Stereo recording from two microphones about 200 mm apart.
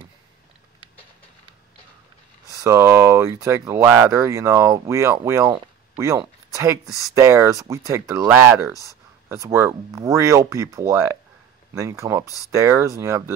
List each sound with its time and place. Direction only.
2.6 s speech: 15° right (ahead or behind)